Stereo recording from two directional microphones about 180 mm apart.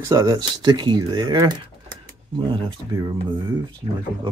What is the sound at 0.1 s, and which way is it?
Speech, 20° right (ahead or behind).